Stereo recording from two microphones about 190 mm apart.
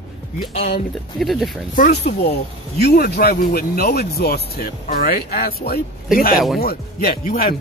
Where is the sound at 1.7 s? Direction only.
55° left (ahead or behind).